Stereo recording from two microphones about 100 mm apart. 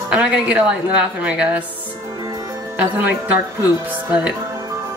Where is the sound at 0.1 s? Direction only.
15° right (ahead or behind).